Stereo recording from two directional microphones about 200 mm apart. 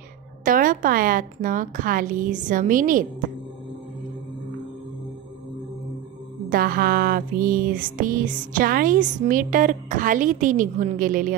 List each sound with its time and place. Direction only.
0.5 s a woman's voice: 45° right (ahead or behind)
6.5 s music: 45° right (ahead or behind)